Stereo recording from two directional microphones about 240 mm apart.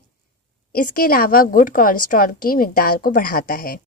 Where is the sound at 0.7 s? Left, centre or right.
Left.